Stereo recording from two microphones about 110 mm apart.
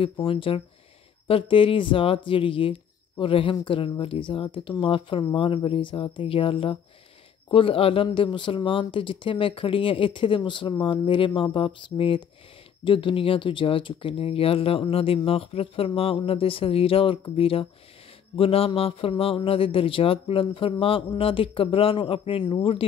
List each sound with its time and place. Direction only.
0.0 s speech: 55° left (ahead or behind)